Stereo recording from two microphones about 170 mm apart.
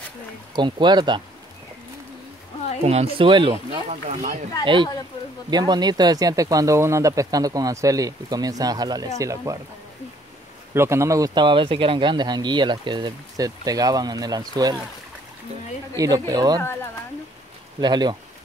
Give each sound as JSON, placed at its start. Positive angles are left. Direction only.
{"t": 0.6, "sound": "speech", "side_deg": -25}
{"t": 2.8, "sound": "speech", "side_deg": -40}
{"t": 5.5, "sound": "speech", "side_deg": -25}
{"t": 10.7, "sound": "speech", "side_deg": -15}
{"t": 16.0, "sound": "speech", "side_deg": -20}
{"t": 17.7, "sound": "speech", "side_deg": -25}